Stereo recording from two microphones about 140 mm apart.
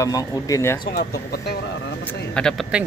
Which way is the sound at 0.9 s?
90° left.